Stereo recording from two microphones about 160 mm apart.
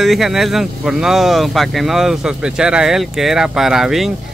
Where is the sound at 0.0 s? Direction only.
Centre (ahead or behind).